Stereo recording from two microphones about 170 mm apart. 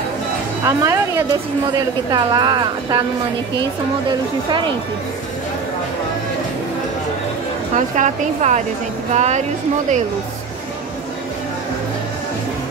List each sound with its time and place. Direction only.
0.7 s a woman's voice: 15° right (ahead or behind)
7.7 s speech: 45° right (ahead or behind)